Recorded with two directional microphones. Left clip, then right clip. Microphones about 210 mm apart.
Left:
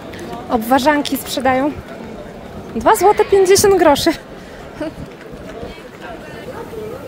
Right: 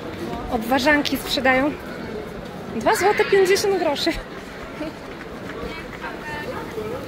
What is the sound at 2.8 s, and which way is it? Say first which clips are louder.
Speech: left 7 dB; 25° left (ahead or behind).